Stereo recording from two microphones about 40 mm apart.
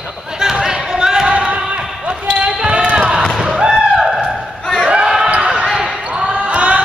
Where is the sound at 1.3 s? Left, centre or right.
Right.